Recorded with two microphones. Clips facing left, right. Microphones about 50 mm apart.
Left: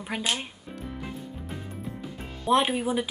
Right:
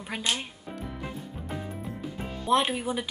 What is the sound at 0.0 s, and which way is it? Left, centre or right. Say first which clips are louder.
Music: left 1 dB; centre.